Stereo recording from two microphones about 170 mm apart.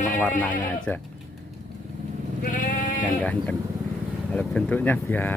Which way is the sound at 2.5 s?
50° left (ahead or behind).